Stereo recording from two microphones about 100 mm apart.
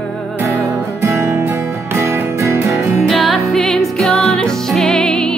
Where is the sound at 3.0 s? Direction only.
Centre (ahead or behind).